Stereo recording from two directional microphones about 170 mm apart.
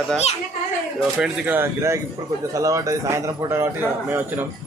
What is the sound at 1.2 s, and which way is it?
Speech, 10° right (ahead or behind).